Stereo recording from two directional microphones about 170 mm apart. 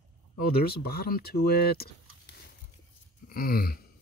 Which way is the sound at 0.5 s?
65° left (ahead or behind).